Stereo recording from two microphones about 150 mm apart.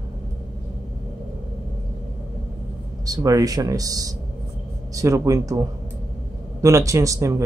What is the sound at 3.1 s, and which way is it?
A man's voice, 25° right (ahead or behind).